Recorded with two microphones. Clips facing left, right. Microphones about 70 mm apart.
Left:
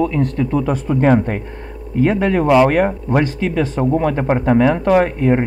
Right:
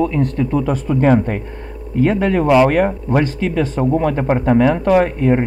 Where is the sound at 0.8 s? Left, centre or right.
Left.